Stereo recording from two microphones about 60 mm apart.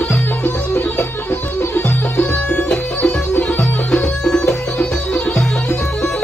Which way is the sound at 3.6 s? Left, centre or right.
Centre.